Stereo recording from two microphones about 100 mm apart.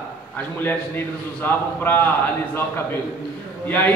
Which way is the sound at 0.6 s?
20° left (ahead or behind).